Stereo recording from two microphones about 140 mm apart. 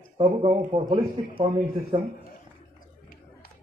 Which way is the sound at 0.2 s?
40° right (ahead or behind).